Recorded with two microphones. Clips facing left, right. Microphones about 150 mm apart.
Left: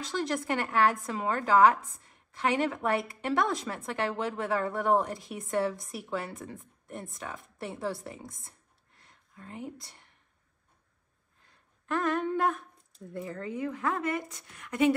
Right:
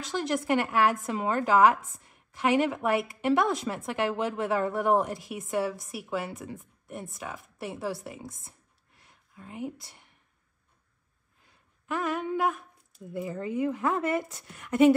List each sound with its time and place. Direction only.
0.0 s a woman's voice: centre (ahead or behind)
11.4 s a woman's voice: 5° right (ahead or behind); by 15.0 s 30° right (ahead or behind)